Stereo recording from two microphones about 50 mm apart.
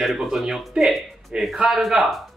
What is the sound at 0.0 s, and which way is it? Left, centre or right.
Speech, centre.